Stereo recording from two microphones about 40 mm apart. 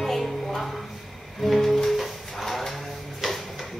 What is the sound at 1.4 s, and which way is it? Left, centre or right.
Music, centre.